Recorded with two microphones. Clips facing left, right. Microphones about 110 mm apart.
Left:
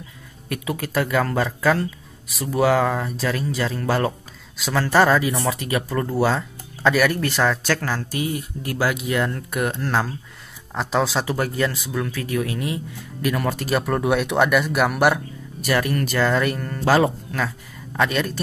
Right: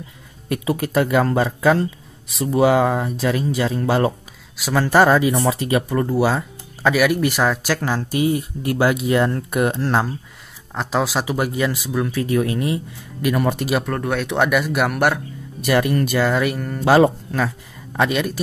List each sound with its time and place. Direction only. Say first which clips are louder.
0.5 s speech: right 5 dB; 25° right (ahead or behind)
10.7 s speech: right 1 dB; centre (ahead or behind); by 13.7 s 20° right (ahead or behind)
13.7 s speech: left 1 dB; 5° left (ahead or behind)
15.7 s speech: right 4 dB; 25° right (ahead or behind)
16.2 s speech: left 2 dB; 5° right (ahead or behind)
16.8 s speech: right 4 dB; 25° right (ahead or behind)
17.9 s speech: right 2 dB; 15° right (ahead or behind)